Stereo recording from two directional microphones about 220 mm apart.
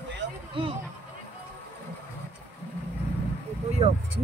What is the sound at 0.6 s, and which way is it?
Speech, 25° right (ahead or behind).